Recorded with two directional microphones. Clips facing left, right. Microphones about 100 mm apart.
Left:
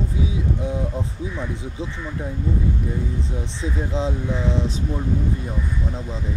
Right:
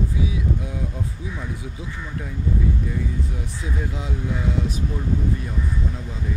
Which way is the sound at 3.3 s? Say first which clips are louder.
Left 3 dB; 25° left (ahead or behind).